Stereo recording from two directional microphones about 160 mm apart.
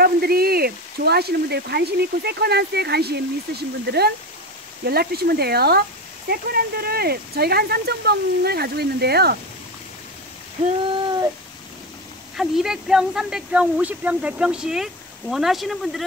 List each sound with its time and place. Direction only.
0.0 s speech: 75° right (ahead or behind); by 4.1 s 90° right
4.8 s speech: 75° right (ahead or behind)
10.9 s a sound: 25° right (ahead or behind)
12.4 s speech: centre (ahead or behind)